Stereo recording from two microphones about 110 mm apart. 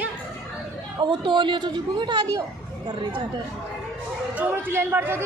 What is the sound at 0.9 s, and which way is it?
Speech, 45° right (ahead or behind).